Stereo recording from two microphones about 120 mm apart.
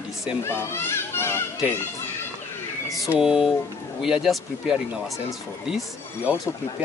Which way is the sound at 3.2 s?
5° right (ahead or behind).